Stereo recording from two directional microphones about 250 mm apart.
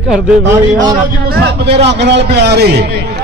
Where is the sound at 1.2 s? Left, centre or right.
Right.